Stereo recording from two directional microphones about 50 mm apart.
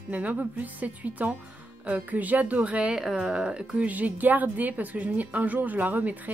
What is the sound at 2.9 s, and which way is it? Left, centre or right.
Speech, centre.